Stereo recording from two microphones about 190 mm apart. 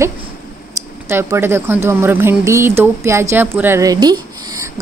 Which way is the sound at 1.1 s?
15° right (ahead or behind).